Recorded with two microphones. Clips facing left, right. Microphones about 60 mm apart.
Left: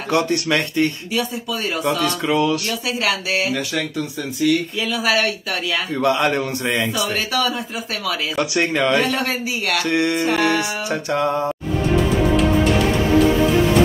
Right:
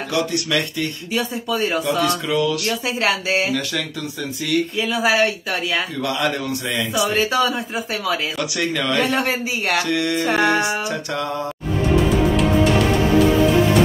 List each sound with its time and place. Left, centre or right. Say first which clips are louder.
0.1 s a man's voice: left 3 dB; left
1.1 s speech: right 1 dB; right
2.0 s a man's voice: left 1 dB; left
2.6 s speech: right 1 dB; right
4.8 s speech: right 1 dB; right
5.9 s a man's voice: left 4 dB; left
6.9 s speech: right 3 dB; right
8.4 s a man's voice: left 4 dB; left
9.0 s speech: right 1 dB; right
9.8 s mantra: left 2 dB; left
10.2 s music: right 1 dB; right
10.9 s mantra: left 4 dB; left